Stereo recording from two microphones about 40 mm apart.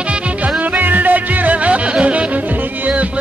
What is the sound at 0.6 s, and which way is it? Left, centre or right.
Music, right.